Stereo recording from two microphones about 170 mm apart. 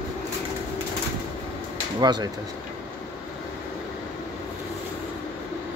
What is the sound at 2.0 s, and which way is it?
Speech, 25° right (ahead or behind).